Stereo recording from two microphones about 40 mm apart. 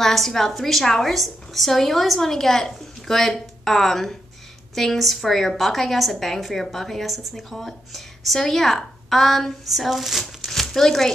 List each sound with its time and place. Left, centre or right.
0.0 s a woman's voice: centre